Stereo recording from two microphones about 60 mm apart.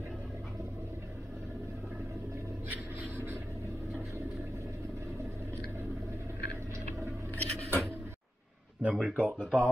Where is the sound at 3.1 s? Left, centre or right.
Right.